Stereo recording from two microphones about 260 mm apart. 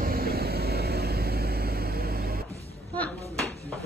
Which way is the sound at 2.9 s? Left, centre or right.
Centre.